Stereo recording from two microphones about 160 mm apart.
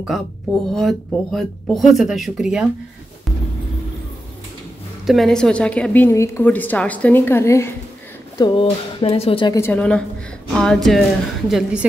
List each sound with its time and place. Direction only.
0.7 s speech: centre (ahead or behind)
5.0 s a woman's voice: centre (ahead or behind); by 7.7 s 15° left (ahead or behind)
8.4 s speech: 35° left (ahead or behind)
9.5 s a woman's voice: 15° left (ahead or behind); by 11.9 s 5° right (ahead or behind)